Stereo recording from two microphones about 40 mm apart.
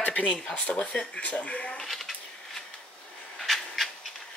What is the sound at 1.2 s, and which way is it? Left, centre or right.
Speech, left.